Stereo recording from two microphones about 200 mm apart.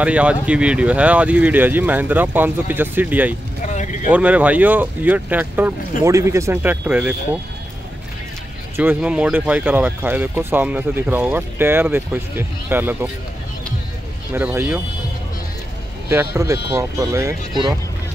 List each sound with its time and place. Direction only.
0.0 s speech: 5° right (ahead or behind)
3.6 s vehicle: 40° left (ahead or behind)
4.1 s speech: 5° right (ahead or behind)
8.7 s speech: 10° right (ahead or behind)
14.3 s speech: 10° right (ahead or behind)
16.1 s speech: 15° right (ahead or behind)